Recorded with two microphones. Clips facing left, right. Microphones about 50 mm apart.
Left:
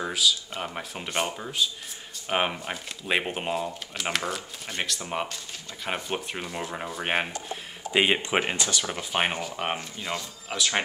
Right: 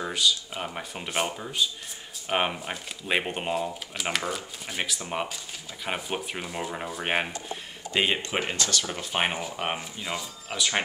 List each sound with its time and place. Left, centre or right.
0.0 s speech: centre
7.9 s speech: centre
9.1 s speech: centre